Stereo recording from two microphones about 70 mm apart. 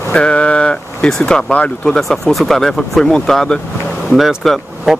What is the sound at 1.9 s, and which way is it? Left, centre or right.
Speech, centre.